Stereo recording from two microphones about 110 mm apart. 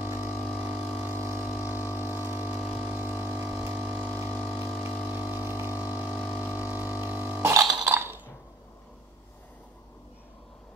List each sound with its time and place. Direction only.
0.0 s a sound: 20° right (ahead or behind)
0.9 s vehicle: 20° right (ahead or behind)
2.7 s didgeridoo: 15° right (ahead or behind)
3.8 s pump: 15° right (ahead or behind)
4.1 s vehicle: 25° right (ahead or behind)
5.0 s a sound: 15° right (ahead or behind)